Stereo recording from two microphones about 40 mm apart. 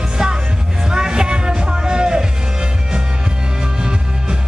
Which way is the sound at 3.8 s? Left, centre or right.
Centre.